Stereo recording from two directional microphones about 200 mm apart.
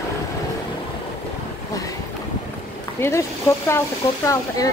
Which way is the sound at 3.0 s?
15° left (ahead or behind).